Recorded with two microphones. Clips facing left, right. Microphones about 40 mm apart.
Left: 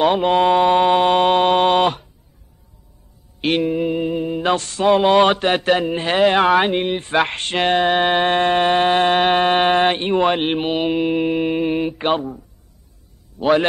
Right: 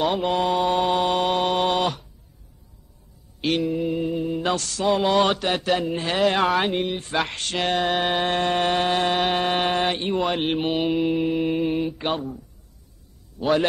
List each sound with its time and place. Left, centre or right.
0.0 s mantra: left
3.3 s a sound: left
13.4 s a man's voice: left